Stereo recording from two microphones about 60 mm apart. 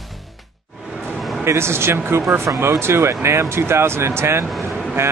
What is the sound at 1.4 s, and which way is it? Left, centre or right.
Speech, right.